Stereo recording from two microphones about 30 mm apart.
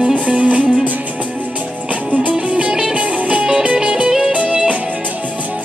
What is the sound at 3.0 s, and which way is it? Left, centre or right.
Music, right.